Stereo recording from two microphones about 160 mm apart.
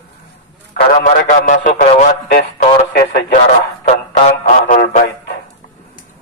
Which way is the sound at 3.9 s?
50° left (ahead or behind).